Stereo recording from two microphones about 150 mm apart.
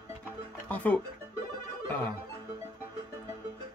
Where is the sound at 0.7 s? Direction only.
10° left (ahead or behind).